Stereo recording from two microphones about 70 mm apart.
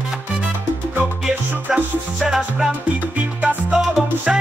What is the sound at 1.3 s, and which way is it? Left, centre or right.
Music, centre.